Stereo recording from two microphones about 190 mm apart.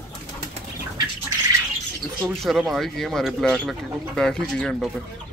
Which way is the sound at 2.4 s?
Centre (ahead or behind).